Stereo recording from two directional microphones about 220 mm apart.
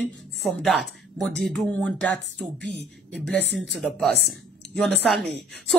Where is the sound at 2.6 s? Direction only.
50° right (ahead or behind).